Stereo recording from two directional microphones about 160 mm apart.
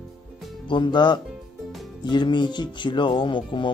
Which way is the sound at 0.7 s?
30° left (ahead or behind).